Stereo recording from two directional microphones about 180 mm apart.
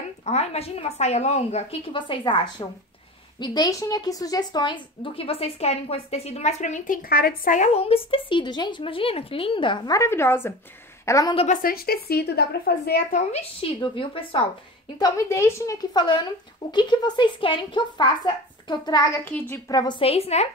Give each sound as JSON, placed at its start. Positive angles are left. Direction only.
{"t": 0.2, "sound": "a woman's voice", "side_deg": 35}
{"t": 11.3, "sound": "a woman's voice", "side_deg": 45}
{"t": 13.3, "sound": "a woman's voice", "side_deg": 30}
{"t": 15.0, "sound": "a woman's voice", "side_deg": 20}